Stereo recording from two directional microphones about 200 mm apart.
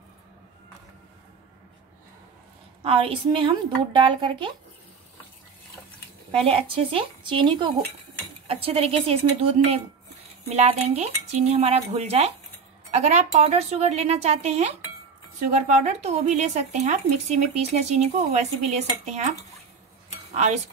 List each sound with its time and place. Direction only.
2.8 s speech: 25° right (ahead or behind)
6.3 s speech: 30° right (ahead or behind)
10.5 s speech: 30° right (ahead or behind)
20.3 s speech: 35° right (ahead or behind)